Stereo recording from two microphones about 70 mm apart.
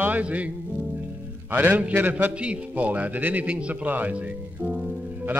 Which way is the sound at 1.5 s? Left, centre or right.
Right.